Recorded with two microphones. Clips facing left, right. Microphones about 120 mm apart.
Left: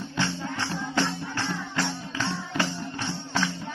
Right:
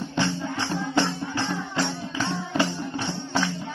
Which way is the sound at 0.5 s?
15° right (ahead or behind).